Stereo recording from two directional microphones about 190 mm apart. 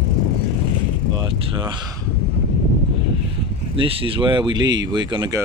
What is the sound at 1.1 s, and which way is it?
Speech, 25° right (ahead or behind).